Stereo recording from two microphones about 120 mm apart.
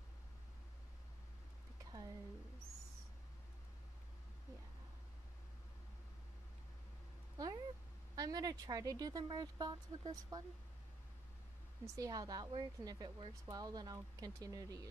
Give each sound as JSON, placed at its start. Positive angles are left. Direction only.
{"t": 1.9, "sound": "a sound", "side_deg": -35}
{"t": 7.3, "sound": "cat", "side_deg": -35}
{"t": 8.2, "sound": "a woman's voice", "side_deg": -30}
{"t": 11.8, "sound": "a woman's voice", "side_deg": -30}